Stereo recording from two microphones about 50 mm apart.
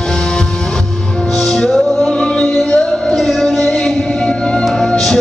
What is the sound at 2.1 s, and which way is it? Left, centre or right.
Music, left.